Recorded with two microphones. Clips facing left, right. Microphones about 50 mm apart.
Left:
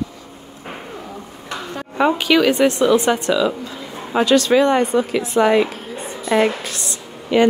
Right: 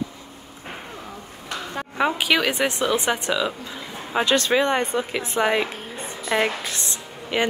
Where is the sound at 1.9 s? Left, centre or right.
Centre.